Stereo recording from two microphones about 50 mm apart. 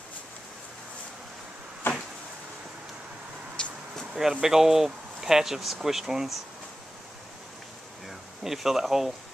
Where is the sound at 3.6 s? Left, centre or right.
Centre.